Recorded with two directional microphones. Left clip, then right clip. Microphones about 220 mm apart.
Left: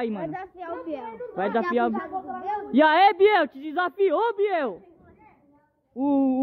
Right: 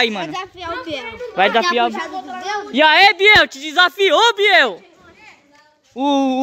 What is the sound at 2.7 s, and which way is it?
Speech, 20° left (ahead or behind).